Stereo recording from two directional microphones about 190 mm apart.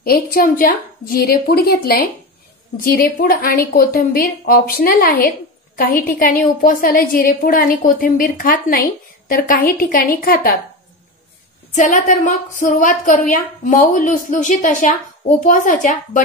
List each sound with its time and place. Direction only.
0.0 s a woman's voice: 50° left (ahead or behind)
11.7 s a woman's voice: 40° left (ahead or behind)